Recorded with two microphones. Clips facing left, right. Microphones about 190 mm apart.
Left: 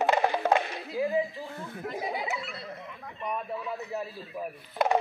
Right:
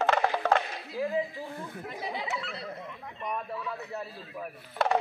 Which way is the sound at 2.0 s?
10° left (ahead or behind).